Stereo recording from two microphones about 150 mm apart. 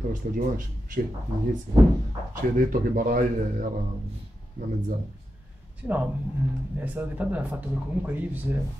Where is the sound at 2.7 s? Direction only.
65° right (ahead or behind).